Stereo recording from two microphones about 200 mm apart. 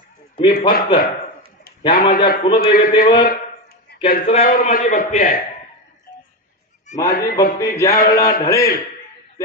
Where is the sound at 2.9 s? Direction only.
25° left (ahead or behind).